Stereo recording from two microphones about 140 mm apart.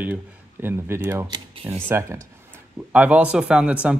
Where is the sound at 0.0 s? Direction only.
15° right (ahead or behind).